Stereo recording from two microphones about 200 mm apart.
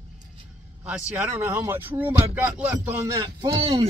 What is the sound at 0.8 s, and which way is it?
Speech, 5° right (ahead or behind).